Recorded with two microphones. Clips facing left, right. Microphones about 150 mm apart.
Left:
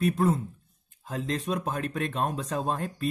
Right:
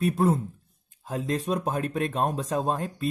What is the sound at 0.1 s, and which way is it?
Speech, 30° right (ahead or behind).